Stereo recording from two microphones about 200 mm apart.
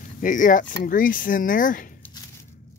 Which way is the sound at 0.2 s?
40° left (ahead or behind).